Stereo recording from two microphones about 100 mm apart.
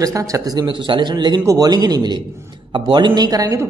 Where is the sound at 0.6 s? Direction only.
55° right (ahead or behind).